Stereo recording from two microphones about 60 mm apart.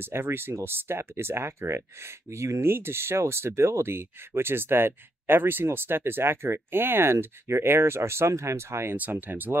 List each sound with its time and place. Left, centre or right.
0.0 s speech: right
8.9 s speech: right